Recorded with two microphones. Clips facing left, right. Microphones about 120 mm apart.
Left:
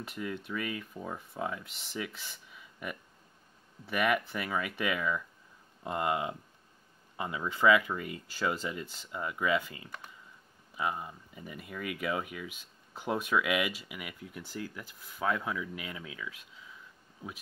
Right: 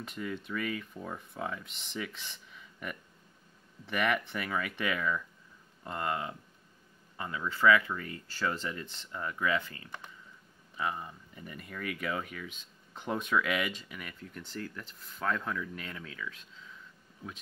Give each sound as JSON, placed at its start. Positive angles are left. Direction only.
{"t": 0.0, "sound": "speech", "side_deg": 5}
{"t": 5.9, "sound": "speech", "side_deg": 20}